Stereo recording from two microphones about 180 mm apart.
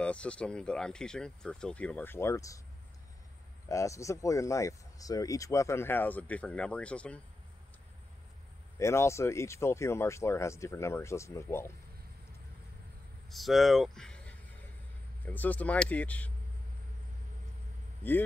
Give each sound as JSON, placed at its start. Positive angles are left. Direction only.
{"t": 0.0, "sound": "speech", "side_deg": 5}
{"t": 3.6, "sound": "speech", "side_deg": 15}
{"t": 8.7, "sound": "speech", "side_deg": 15}
{"t": 13.3, "sound": "speech", "side_deg": 0}